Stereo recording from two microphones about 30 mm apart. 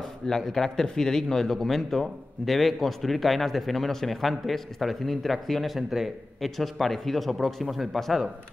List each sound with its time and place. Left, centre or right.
0.3 s a man's voice: centre
5.8 s a man's voice: centre
6.4 s a man's voice: centre